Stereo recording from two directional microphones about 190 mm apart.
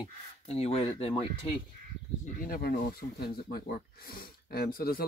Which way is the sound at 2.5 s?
55° left (ahead or behind).